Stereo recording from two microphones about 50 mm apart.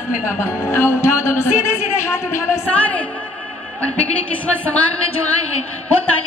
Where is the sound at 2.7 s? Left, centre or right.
Left.